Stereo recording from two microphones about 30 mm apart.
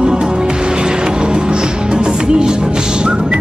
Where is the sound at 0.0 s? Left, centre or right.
Right.